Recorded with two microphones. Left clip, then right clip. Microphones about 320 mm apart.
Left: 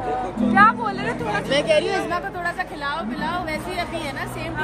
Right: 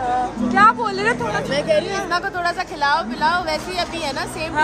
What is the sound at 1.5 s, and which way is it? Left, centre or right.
Speech, left.